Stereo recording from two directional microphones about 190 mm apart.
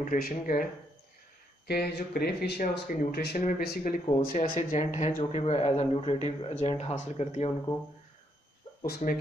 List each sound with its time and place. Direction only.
0.0 s speech: 45° left (ahead or behind)
1.7 s speech: 60° left (ahead or behind); by 7.5 s 35° left (ahead or behind)
9.0 s speech: 40° left (ahead or behind)